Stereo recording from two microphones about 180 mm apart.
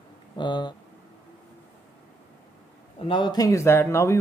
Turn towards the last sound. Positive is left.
turn(degrees=15)  # may be behind; listen again after turning